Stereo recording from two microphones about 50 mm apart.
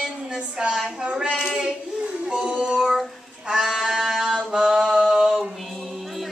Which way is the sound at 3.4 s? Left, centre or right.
Centre.